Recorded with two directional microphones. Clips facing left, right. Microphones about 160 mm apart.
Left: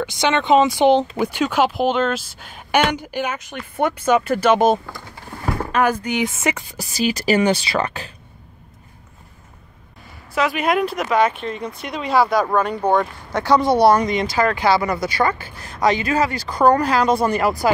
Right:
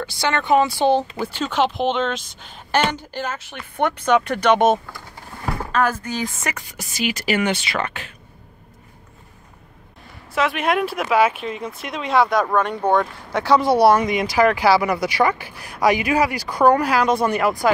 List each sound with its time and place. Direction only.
0.0 s speech: 20° left (ahead or behind); by 4.7 s centre (ahead or behind)
5.7 s speech: 15° left (ahead or behind); by 8.1 s 35° left (ahead or behind)
10.3 s speech: centre (ahead or behind)